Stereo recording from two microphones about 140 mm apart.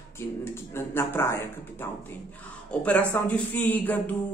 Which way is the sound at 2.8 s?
10° left (ahead or behind).